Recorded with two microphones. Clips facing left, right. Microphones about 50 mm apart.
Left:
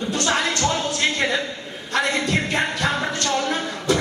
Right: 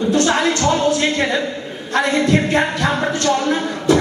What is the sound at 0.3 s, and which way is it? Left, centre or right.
Music, centre.